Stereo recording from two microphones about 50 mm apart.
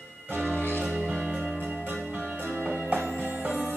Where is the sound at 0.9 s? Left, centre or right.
Right.